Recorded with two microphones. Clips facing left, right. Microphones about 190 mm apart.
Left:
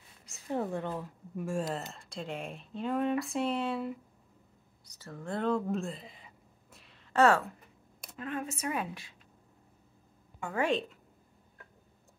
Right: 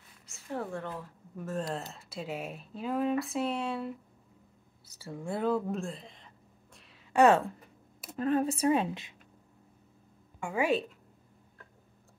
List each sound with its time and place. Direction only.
0.5 s speech: 20° left (ahead or behind); by 4.0 s centre (ahead or behind)
4.8 s a sound: 10° right (ahead or behind)
7.1 s a woman's voice: 15° right (ahead or behind)
8.2 s a woman's voice: 35° right (ahead or behind)
10.4 s a woman's voice: 10° right (ahead or behind)